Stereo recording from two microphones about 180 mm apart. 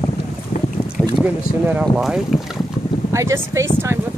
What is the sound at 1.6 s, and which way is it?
Speech, 10° right (ahead or behind).